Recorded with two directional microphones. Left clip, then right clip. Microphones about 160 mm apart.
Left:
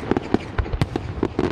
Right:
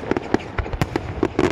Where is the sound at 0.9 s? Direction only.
20° right (ahead or behind).